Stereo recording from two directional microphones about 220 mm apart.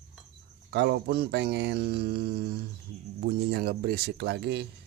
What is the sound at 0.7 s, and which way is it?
Speech, 50° right (ahead or behind).